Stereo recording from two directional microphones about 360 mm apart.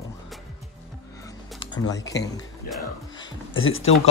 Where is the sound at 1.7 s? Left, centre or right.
Centre.